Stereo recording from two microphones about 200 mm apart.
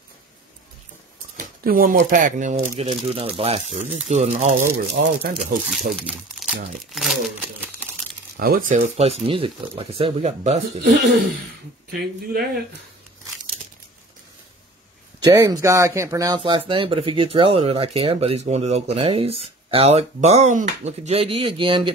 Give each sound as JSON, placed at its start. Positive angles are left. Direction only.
{"t": 1.3, "sound": "speech", "side_deg": -45}
{"t": 4.7, "sound": "speech", "side_deg": -50}
{"t": 6.0, "sound": "speech", "side_deg": 0}
{"t": 8.4, "sound": "speech", "side_deg": -45}
{"t": 10.8, "sound": "speech", "side_deg": -50}
{"t": 15.3, "sound": "speech", "side_deg": -20}